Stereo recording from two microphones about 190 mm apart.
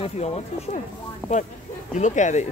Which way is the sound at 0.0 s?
30° left (ahead or behind).